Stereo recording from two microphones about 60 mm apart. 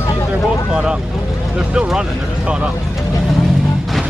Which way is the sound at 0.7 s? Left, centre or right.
Centre.